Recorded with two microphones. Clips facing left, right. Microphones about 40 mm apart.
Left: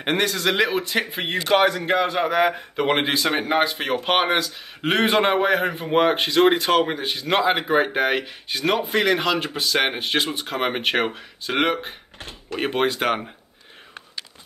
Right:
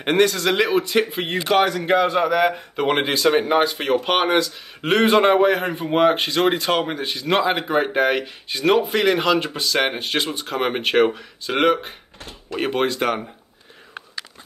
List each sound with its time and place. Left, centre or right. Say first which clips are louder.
0.0 s a man's voice: right 4 dB; centre; by 2.4 s left
2.8 s a man's voice: right 2 dB; centre
10.5 s speech: right 3 dB; centre
12.2 s door: even; left
12.5 s speech: right 1 dB; centre